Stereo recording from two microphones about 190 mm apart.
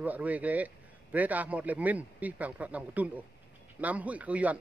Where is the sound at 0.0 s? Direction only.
10° right (ahead or behind).